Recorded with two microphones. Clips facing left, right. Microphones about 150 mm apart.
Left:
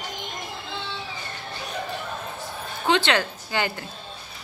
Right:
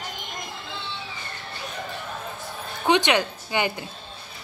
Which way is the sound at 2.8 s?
15° right (ahead or behind).